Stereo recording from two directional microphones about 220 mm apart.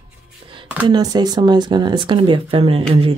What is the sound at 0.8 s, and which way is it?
Speech, 20° right (ahead or behind).